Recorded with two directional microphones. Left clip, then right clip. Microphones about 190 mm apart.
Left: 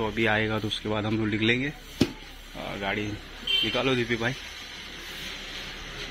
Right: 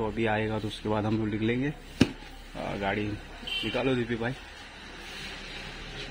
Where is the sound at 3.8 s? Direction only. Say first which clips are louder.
Left 3 dB; centre (ahead or behind).